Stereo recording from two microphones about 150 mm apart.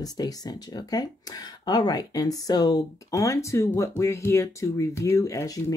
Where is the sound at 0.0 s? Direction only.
25° left (ahead or behind).